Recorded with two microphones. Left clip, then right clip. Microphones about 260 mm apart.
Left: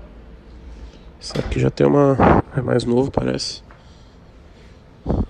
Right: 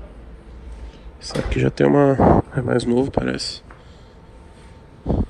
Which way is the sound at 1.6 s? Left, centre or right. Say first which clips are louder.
Even; left.